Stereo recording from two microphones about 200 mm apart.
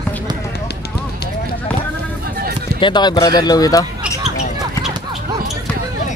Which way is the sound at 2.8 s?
20° left (ahead or behind).